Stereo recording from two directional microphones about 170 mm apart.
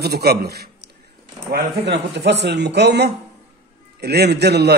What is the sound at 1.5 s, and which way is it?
A man's voice, 85° right.